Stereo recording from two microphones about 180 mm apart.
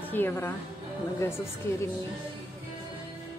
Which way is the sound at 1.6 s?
15° left (ahead or behind).